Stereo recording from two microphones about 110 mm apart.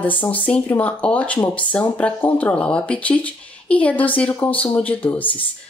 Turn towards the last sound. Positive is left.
turn(degrees=15)  # may be behind; listen again after turning